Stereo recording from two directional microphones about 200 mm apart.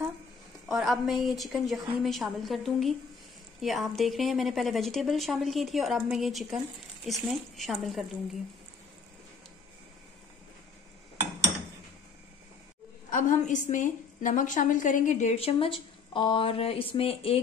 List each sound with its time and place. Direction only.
0.7 s a woman's voice: centre (ahead or behind)
13.1 s a woman's voice: 40° left (ahead or behind)